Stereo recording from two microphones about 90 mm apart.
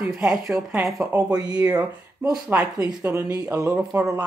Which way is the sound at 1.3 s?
45° right (ahead or behind).